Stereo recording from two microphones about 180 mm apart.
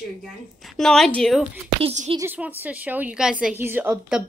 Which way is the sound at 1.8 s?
40° right (ahead or behind).